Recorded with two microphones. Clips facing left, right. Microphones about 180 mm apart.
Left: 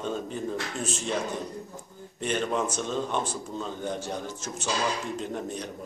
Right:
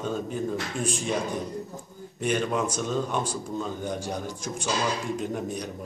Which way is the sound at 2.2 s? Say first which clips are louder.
Right 2 dB; 10° right (ahead or behind).